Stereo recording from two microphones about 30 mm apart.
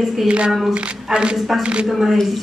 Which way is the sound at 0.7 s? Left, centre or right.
Right.